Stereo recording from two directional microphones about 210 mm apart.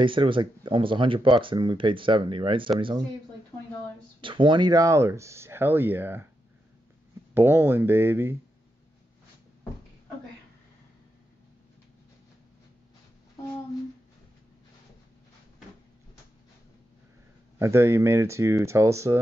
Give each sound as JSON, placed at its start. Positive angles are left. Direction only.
{"t": 0.0, "sound": "speech", "side_deg": -25}
{"t": 4.2, "sound": "speech", "side_deg": -25}
{"t": 7.3, "sound": "speech", "side_deg": -10}
{"t": 17.6, "sound": "speech", "side_deg": -10}